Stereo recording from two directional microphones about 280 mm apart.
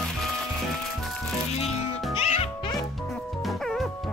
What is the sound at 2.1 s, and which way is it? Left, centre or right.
Music, left.